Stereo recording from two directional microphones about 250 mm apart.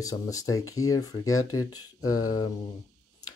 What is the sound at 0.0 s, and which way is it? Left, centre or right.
Speech, centre.